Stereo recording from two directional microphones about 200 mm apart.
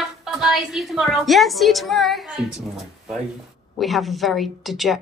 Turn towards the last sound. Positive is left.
turn(degrees=0)  # may be behind; listen again after turning